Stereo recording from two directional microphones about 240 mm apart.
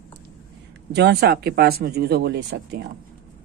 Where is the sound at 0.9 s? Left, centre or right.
Right.